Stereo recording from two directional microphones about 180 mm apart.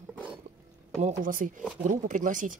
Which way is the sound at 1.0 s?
40° right (ahead or behind).